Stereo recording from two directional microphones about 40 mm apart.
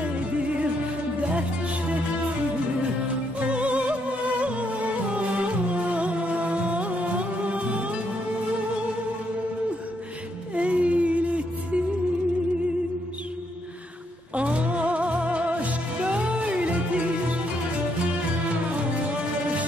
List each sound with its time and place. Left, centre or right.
3.3 s music: right
10.5 s music: right
14.3 s music: right